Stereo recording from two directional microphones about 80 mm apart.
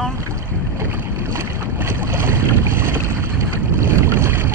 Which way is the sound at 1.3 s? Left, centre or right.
Right.